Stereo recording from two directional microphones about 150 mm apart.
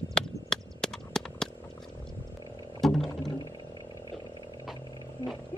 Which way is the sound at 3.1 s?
25° left (ahead or behind).